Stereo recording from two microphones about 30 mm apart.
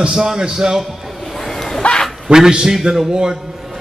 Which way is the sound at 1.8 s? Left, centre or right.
Left.